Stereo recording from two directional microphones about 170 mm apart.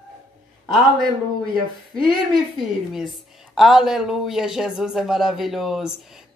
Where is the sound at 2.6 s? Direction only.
Centre (ahead or behind).